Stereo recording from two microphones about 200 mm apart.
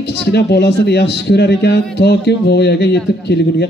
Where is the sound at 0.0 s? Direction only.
55° left (ahead or behind).